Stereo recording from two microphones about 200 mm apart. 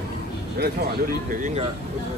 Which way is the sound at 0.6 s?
50° right (ahead or behind).